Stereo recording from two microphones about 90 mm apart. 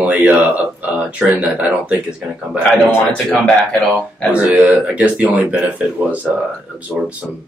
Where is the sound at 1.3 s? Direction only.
15° right (ahead or behind).